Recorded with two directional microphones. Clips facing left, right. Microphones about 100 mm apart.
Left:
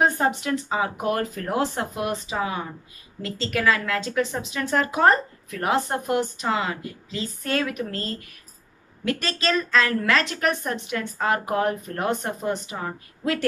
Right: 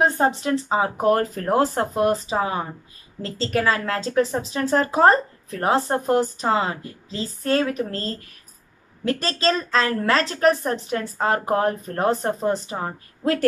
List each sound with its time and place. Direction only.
0.1 s a woman's voice: 30° right (ahead or behind)